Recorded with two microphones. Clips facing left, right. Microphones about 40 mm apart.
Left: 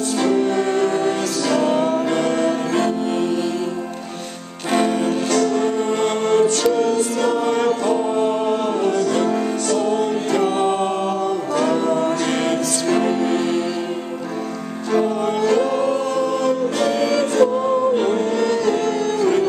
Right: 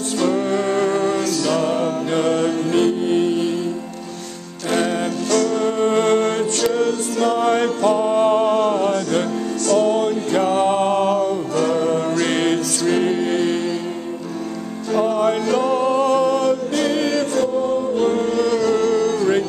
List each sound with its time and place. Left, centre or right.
0.2 s music: centre
2.0 s music: centre
2.7 s music: right
5.3 s music: left
5.8 s music: right
6.7 s music: centre
7.8 s music: centre
9.8 s music: centre
10.4 s music: centre
11.5 s music: centre
12.4 s music: centre
14.9 s music: centre
17.1 s music: centre